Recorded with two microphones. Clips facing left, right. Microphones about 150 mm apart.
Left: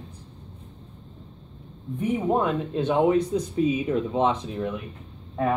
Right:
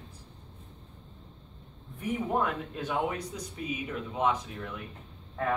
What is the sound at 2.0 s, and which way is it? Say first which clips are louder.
Speech: left 6 dB; 25° left (ahead or behind).